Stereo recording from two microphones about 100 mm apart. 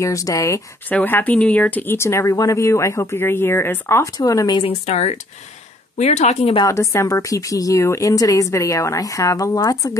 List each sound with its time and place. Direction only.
0.0 s speech: 35° left (ahead or behind)
0.8 s speech: 20° left (ahead or behind)
2.0 s speech: 25° left (ahead or behind)
4.2 s speech: 40° left (ahead or behind)
4.6 s speech: 80° left
6.7 s speech: 30° left (ahead or behind)